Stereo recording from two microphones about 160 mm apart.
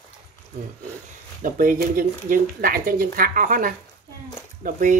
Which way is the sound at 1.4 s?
60° right (ahead or behind).